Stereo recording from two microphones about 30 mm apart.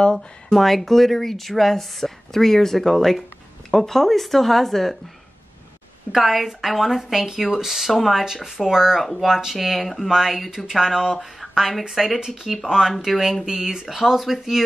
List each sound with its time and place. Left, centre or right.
0.1 s a woman's voice: centre
6.2 s speech: centre
12.6 s speech: centre
13.5 s speech: right